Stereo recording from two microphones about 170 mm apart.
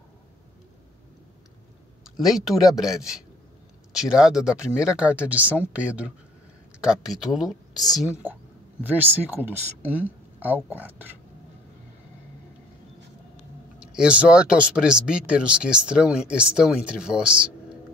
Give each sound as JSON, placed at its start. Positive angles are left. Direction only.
{"t": 2.2, "sound": "speech", "side_deg": 0}
{"t": 7.2, "sound": "speech", "side_deg": 0}
{"t": 7.7, "sound": "speech", "side_deg": 20}
{"t": 8.8, "sound": "speech", "side_deg": -10}
{"t": 13.7, "sound": "speech", "side_deg": -5}